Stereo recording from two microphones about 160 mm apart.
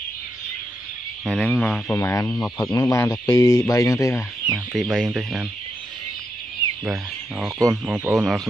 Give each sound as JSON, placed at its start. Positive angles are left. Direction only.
{"t": 1.2, "sound": "speech", "side_deg": 5}
{"t": 2.0, "sound": "speech", "side_deg": 15}
{"t": 4.5, "sound": "speech", "side_deg": 0}
{"t": 6.9, "sound": "speech", "side_deg": -5}